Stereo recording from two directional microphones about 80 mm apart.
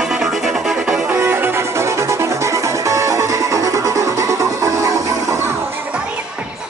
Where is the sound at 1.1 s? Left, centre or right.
Right.